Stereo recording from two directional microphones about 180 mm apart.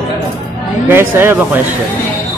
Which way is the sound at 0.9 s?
10° right (ahead or behind).